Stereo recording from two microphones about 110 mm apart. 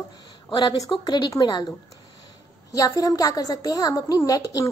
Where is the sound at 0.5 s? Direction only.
45° left (ahead or behind).